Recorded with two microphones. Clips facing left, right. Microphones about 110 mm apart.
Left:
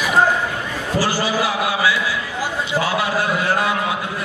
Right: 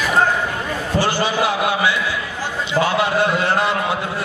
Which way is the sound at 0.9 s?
20° right (ahead or behind).